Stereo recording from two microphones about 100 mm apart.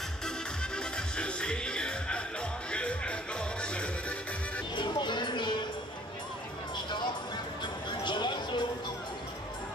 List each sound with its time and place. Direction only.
0.7 s music: 10° left (ahead or behind)
4.7 s music: 50° left (ahead or behind)
8.0 s a sound: 50° left (ahead or behind)